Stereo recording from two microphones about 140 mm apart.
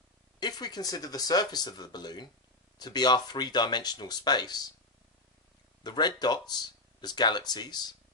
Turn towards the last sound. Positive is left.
turn(degrees=30)  # may be behind; listen again after turning